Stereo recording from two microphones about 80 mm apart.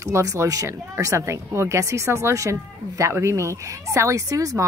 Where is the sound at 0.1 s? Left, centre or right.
Right.